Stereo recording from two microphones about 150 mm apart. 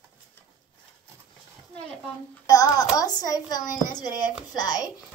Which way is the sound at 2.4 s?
25° left (ahead or behind).